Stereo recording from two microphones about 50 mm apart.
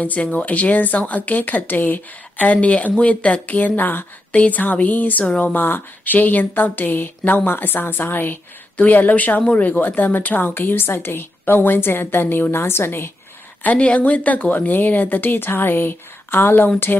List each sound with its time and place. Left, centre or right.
0.0 s a woman's voice: left
13.7 s speech: left